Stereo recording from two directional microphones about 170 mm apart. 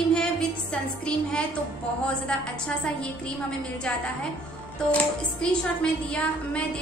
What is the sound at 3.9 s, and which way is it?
Speech, 5° left (ahead or behind).